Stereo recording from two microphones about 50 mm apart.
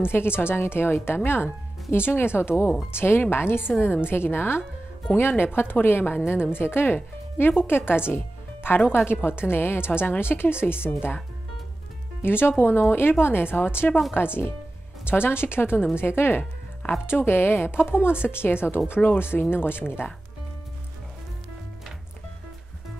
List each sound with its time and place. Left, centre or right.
0.0 s speech: left
12.2 s speech: left